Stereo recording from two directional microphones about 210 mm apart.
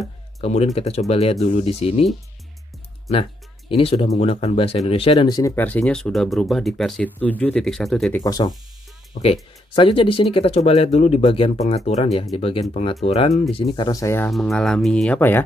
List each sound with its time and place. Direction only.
0.4 s speech: 30° left (ahead or behind)
3.1 s speech: 25° left (ahead or behind)
5.6 s speech: 5° left (ahead or behind)
8.2 s speech: 20° left (ahead or behind)
14.3 s speech: centre (ahead or behind)